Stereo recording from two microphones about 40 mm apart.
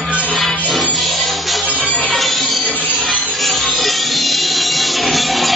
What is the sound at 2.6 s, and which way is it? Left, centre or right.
Music, left.